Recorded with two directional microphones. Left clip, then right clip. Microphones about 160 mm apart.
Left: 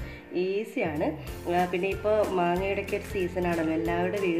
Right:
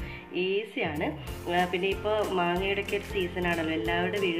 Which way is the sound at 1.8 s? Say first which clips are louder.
Left 2 dB; centre (ahead or behind).